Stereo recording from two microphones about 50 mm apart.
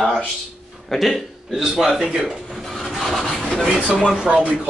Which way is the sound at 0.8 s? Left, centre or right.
Centre.